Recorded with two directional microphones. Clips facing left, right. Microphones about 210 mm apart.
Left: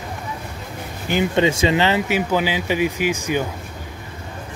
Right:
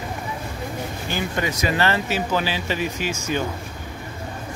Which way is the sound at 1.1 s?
20° left (ahead or behind).